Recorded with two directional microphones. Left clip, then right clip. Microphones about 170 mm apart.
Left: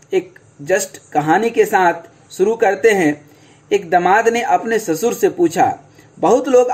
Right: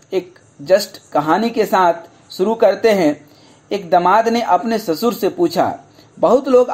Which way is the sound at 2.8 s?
35° right (ahead or behind).